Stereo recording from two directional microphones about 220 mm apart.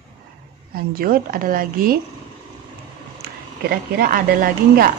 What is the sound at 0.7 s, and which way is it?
A woman's voice, 40° right (ahead or behind).